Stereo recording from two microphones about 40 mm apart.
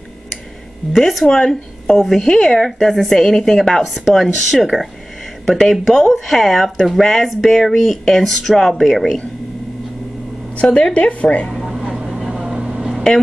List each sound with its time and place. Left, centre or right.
0.9 s speech: centre
1.3 s a woman's voice: centre
8.1 s speech: centre
10.7 s speech: left
12.3 s vehicle: centre